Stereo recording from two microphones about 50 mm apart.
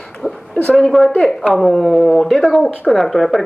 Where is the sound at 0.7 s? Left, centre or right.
Centre.